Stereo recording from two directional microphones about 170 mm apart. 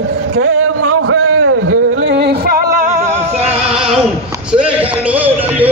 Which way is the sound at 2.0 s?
85° right.